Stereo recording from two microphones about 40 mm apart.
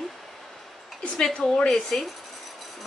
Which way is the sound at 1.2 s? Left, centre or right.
Centre.